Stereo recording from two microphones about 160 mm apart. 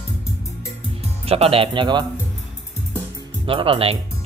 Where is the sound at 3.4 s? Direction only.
35° right (ahead or behind).